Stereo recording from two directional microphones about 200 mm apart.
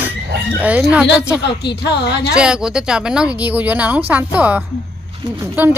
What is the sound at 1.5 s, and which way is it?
Speech, 55° left (ahead or behind).